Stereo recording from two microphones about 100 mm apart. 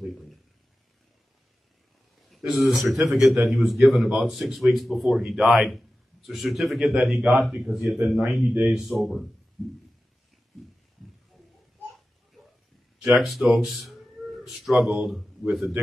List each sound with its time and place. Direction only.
2.2 s a man's voice: centre (ahead or behind)
13.1 s a man's voice: centre (ahead or behind)